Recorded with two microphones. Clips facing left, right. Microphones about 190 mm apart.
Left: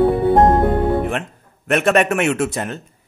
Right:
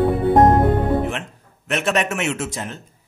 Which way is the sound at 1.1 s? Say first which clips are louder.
Left 4 dB; 55° left (ahead or behind).